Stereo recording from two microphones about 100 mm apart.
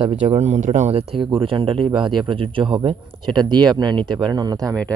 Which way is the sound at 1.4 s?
65° right (ahead or behind).